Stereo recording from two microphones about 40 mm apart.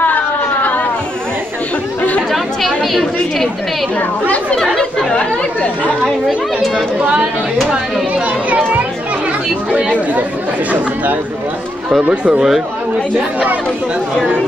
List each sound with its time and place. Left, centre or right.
0.0 s chatter: left
2.3 s chatter: centre
7.0 s speech: right
9.7 s chatter: right
12.1 s speech: right